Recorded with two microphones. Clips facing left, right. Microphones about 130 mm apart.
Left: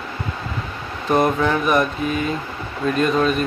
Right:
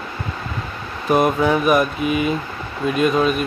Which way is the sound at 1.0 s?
10° right (ahead or behind).